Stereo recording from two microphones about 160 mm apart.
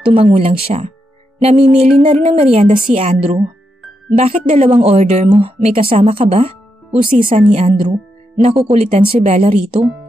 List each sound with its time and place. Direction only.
0.0 s speech: 35° right (ahead or behind)